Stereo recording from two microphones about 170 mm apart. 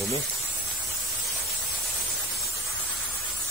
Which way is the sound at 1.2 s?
Centre (ahead or behind).